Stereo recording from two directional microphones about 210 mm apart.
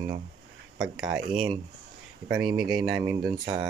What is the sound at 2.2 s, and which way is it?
Speech, 20° right (ahead or behind).